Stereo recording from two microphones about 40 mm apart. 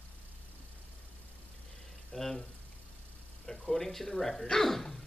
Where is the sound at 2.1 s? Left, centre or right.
Centre.